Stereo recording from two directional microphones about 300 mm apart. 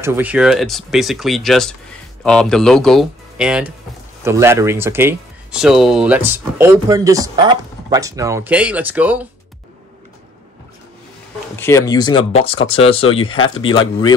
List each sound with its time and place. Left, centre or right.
0.0 s speech: centre
11.5 s speech: centre